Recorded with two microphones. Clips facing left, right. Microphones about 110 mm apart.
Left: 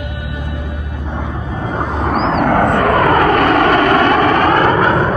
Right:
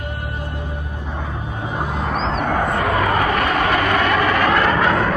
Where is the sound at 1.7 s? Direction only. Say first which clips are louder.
Left 5 dB; 45° left (ahead or behind).